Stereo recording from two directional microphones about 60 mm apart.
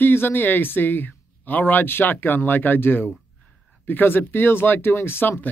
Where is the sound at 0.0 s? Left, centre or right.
Left.